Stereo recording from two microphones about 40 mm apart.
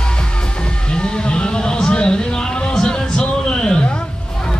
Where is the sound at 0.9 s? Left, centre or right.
Left.